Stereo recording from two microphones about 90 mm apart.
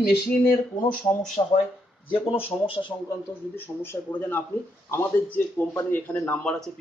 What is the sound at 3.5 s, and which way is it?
Speech, 25° left (ahead or behind).